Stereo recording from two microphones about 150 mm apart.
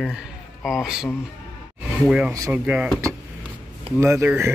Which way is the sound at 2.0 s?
5° right (ahead or behind).